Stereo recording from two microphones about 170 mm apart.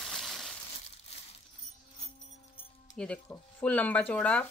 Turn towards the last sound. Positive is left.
turn(degrees=10)  # may be behind; listen again after turning